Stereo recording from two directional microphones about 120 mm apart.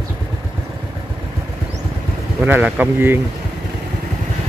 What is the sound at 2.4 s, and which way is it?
Speech, 15° right (ahead or behind).